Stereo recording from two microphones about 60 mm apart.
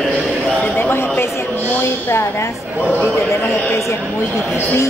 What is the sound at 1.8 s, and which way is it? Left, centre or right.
Speech, left.